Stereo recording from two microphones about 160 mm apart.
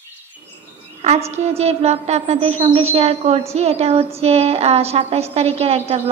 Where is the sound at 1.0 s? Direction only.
40° right (ahead or behind).